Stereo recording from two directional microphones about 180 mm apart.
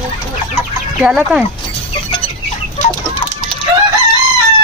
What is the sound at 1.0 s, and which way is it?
Speech, 5° right (ahead or behind).